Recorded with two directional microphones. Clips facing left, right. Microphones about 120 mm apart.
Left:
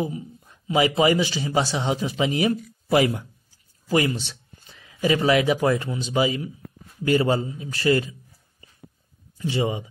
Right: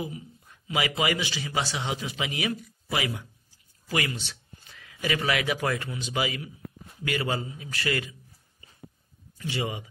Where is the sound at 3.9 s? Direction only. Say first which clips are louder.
Left 8 dB; 30° left (ahead or behind).